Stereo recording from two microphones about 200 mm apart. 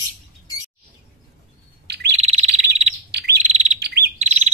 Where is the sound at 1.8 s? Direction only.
55° right (ahead or behind).